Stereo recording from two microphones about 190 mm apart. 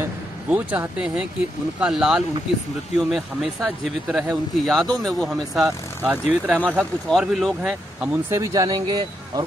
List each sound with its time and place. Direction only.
0.0 s speech: 10° right (ahead or behind)
8.4 s speech: 20° right (ahead or behind)